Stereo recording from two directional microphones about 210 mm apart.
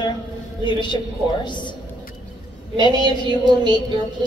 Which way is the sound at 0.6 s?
20° left (ahead or behind).